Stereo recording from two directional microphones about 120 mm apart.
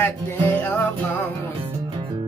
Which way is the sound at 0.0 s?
15° left (ahead or behind).